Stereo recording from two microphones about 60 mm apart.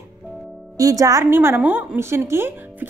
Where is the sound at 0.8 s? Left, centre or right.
Right.